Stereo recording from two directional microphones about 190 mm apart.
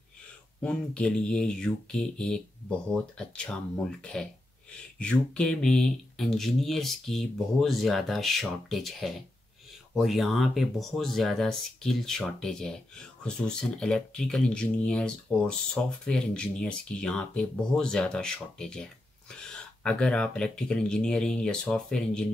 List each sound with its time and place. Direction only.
0.6 s speech: 5° left (ahead or behind)